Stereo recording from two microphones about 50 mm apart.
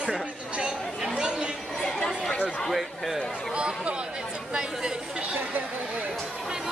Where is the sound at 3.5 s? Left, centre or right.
Right.